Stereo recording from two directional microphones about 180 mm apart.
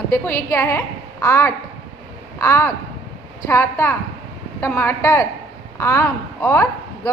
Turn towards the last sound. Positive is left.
turn(degrees=10)  # may be behind; listen again after turning